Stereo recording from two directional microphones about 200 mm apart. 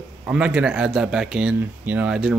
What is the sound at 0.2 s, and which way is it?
Speech, 5° right (ahead or behind).